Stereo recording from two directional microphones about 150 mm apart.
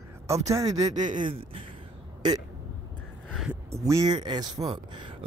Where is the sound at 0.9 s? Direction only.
55° right (ahead or behind).